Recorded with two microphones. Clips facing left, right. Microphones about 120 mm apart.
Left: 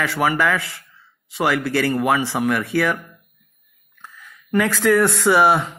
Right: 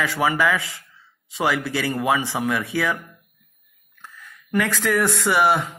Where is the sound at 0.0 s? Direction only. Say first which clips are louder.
Left 1 dB; 15° right (ahead or behind).